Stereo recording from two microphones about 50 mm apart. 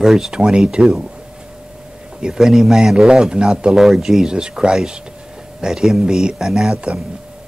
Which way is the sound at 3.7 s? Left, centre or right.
Centre.